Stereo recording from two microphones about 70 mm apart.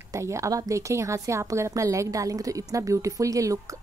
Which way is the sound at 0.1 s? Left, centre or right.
Right.